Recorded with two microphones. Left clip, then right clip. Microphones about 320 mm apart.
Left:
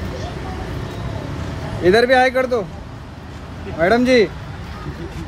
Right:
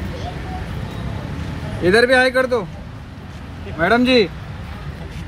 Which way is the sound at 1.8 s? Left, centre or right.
Right.